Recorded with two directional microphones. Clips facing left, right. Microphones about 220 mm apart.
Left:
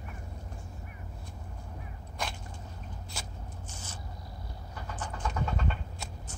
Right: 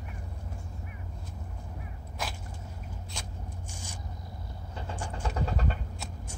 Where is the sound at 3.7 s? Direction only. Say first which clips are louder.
Right 2 dB; 10° right (ahead or behind).